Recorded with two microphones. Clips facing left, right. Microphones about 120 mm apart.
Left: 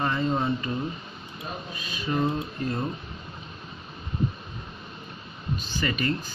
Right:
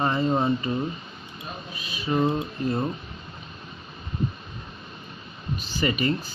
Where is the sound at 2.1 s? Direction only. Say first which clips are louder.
Right 3 dB; 20° right (ahead or behind).